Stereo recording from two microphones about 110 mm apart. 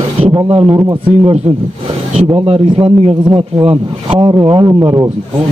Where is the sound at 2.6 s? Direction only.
50° right (ahead or behind).